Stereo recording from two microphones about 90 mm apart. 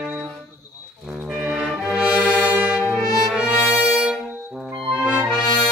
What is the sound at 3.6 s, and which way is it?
Brass instrument, 30° left (ahead or behind).